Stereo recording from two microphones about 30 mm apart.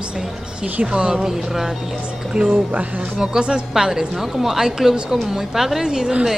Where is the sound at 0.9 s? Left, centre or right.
Right.